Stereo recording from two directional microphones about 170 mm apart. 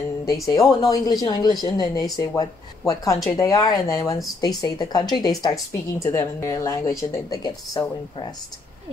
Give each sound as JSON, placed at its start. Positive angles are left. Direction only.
{"t": 0.3, "sound": "speech", "side_deg": 20}